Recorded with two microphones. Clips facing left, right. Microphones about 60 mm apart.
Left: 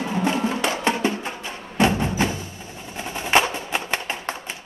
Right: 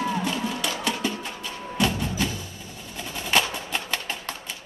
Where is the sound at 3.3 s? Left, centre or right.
Left.